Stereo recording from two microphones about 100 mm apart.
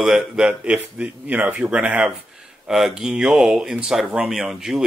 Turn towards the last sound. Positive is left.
turn(degrees=-5)  # may be behind; listen again after turning